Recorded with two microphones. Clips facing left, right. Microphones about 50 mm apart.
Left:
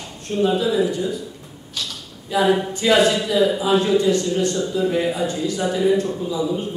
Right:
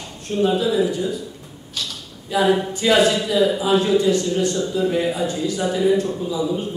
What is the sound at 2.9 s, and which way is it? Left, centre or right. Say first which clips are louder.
A man's voice: even; centre.